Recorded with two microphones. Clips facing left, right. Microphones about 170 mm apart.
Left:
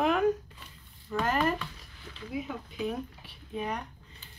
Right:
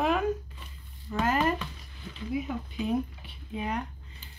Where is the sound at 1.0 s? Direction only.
15° right (ahead or behind).